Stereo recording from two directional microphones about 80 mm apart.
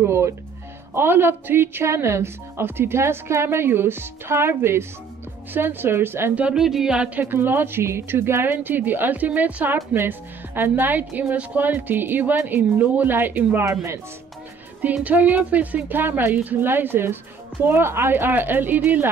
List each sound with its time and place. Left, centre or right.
0.0 s a woman's voice: right
6.5 s speech: centre
7.2 s a woman's voice: right
15.0 s a woman's voice: centre